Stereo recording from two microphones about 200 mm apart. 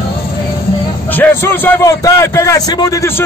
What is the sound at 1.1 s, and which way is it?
A man's voice, 10° left (ahead or behind).